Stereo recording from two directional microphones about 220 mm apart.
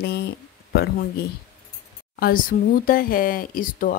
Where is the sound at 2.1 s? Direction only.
40° left (ahead or behind).